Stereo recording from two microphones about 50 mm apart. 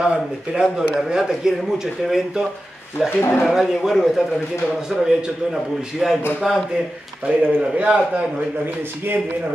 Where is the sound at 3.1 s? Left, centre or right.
Left.